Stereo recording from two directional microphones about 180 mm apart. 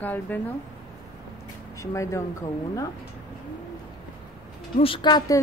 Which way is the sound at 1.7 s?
15° left (ahead or behind).